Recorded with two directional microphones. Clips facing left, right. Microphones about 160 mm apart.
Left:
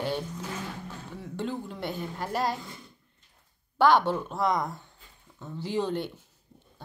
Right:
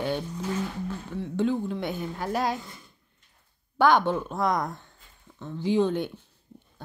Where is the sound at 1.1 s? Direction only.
Centre (ahead or behind).